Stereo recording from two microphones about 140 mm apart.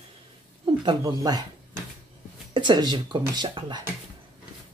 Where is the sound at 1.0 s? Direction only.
30° right (ahead or behind).